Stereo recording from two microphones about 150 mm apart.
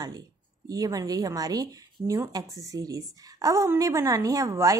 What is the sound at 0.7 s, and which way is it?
Speech, 25° right (ahead or behind).